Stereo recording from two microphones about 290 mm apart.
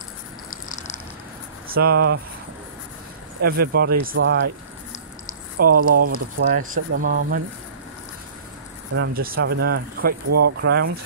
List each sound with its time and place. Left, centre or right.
1.7 s speech: right
3.4 s speech: right
5.6 s speech: right
8.9 s speech: right
10.2 s speech: right
10.6 s speech: right